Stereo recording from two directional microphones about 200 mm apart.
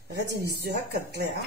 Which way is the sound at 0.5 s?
55° right (ahead or behind).